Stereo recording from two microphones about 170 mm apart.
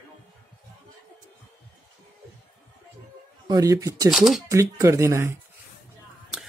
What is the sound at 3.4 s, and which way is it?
Speech, 20° right (ahead or behind).